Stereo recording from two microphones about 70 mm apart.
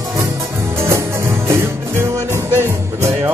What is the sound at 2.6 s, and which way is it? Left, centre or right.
Music, right.